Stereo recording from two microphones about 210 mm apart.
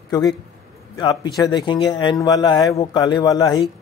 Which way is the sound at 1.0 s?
20° left (ahead or behind).